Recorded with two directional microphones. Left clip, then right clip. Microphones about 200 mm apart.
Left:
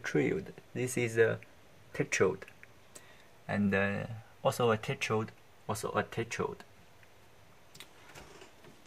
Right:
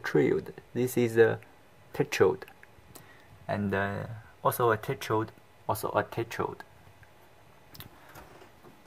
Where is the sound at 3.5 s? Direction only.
10° right (ahead or behind).